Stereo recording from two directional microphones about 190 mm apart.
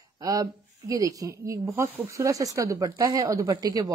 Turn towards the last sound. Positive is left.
turn(degrees=-20)  # may be behind; listen again after turning